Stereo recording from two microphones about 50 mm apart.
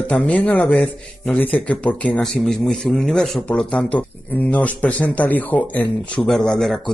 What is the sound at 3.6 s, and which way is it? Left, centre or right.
Speech, centre.